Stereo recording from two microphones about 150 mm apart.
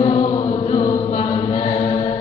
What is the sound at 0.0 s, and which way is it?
Chant, 40° left (ahead or behind).